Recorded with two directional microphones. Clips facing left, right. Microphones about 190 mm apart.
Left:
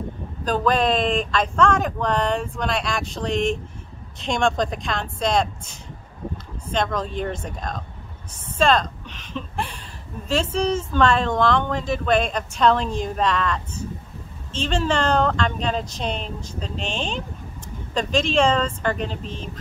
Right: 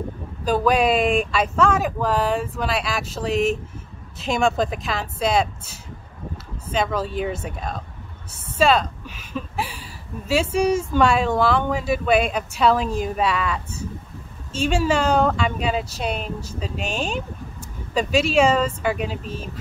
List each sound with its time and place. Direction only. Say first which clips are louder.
0.5 s speech: right 2 dB; 10° right (ahead or behind)